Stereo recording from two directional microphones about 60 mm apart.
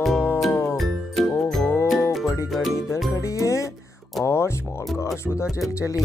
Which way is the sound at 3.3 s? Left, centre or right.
Left.